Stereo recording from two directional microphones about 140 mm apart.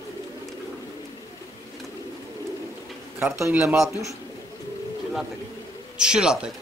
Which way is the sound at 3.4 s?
15° right (ahead or behind).